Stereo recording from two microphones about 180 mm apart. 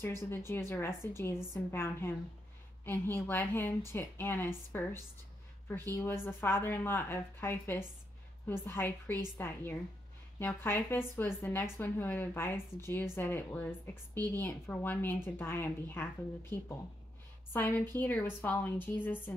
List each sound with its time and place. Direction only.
0.0 s speech: 15° left (ahead or behind)